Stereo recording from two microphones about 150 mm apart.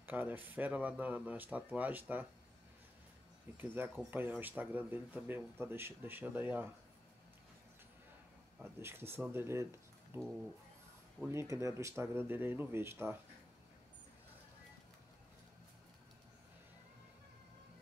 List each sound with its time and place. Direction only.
0.0 s speech: 15° right (ahead or behind)
3.5 s speech: 15° right (ahead or behind)
8.6 s speech: 15° right (ahead or behind)
11.2 s speech: 20° right (ahead or behind)